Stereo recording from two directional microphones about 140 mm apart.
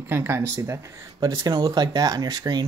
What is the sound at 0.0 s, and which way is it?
Speech, 15° right (ahead or behind).